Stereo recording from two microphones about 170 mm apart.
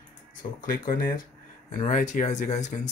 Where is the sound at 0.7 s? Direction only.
55° left (ahead or behind).